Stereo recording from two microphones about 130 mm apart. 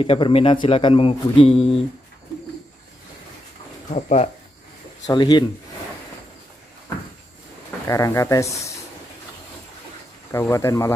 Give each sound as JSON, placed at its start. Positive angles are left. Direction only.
{"t": 0.0, "sound": "a man's voice", "side_deg": 45}
{"t": 3.9, "sound": "speech", "side_deg": 60}
{"t": 5.0, "sound": "speech", "side_deg": 35}
{"t": 7.8, "sound": "speech", "side_deg": 25}
{"t": 10.3, "sound": "speech", "side_deg": 20}